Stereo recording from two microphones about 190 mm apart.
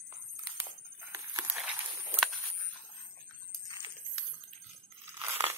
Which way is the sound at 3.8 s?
25° right (ahead or behind).